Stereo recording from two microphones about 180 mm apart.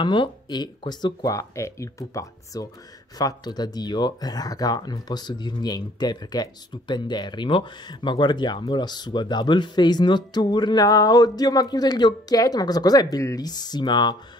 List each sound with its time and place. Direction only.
0.0 s speech: 25° left (ahead or behind)